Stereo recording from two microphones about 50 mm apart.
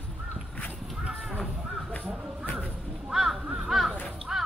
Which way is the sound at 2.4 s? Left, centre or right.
Left.